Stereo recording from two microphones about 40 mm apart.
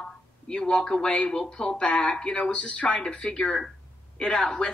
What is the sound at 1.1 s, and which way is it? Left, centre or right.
A woman's voice, left.